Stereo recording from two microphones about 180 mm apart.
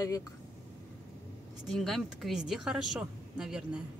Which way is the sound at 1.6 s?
Centre (ahead or behind).